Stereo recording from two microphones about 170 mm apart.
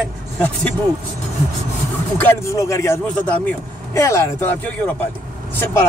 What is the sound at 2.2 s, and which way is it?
Speech, 15° left (ahead or behind).